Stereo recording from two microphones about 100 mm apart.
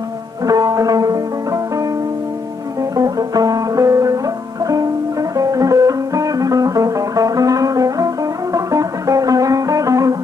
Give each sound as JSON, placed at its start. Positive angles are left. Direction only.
{"t": 0.5, "sound": "music", "side_deg": -35}
{"t": 3.0, "sound": "music", "side_deg": -35}
{"t": 5.4, "sound": "music", "side_deg": -35}